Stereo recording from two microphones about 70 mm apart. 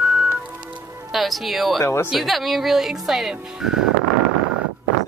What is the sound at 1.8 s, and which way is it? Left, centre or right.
Speech, left.